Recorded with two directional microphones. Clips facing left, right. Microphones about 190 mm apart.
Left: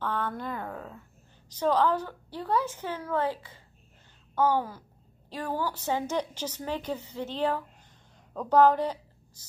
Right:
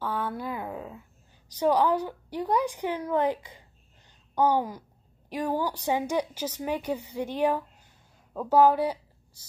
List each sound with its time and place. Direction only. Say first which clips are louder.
0.0 s a woman's voice: right 1 dB; 10° right (ahead or behind)